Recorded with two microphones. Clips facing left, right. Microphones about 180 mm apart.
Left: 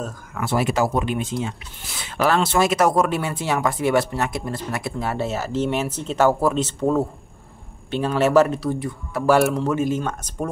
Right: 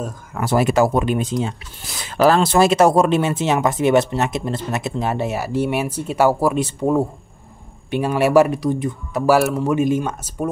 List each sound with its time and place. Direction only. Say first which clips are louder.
0.3 s speech: right 4 dB; 40° right (ahead or behind); by 9.3 s 20° right (ahead or behind)
9.3 s a man's voice: right 1 dB; 5° right (ahead or behind)